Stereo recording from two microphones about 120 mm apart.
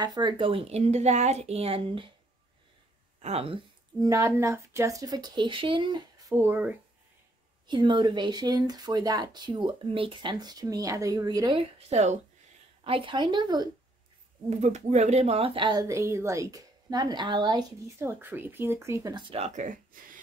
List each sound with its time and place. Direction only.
0.0 s speech: 35° right (ahead or behind)
0.4 s speech: 50° right (ahead or behind)
3.2 s speech: 60° right (ahead or behind)
4.0 s speech: 25° right (ahead or behind)
6.3 s speech: 15° right (ahead or behind)
7.6 s speech: 40° right (ahead or behind)
11.5 s speech: 55° right (ahead or behind)
12.8 s speech: 50° right (ahead or behind)
14.5 s speech: 70° right (ahead or behind); by 17.7 s 40° right (ahead or behind)
17.8 s speech: 20° right (ahead or behind)
19.3 s speech: 75° right (ahead or behind); by 19.8 s 90° right